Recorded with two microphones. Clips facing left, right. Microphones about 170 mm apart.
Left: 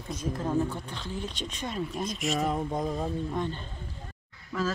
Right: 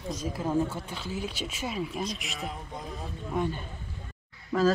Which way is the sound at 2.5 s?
45° left (ahead or behind).